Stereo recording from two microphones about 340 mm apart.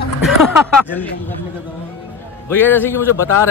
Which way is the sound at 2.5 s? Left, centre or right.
Centre.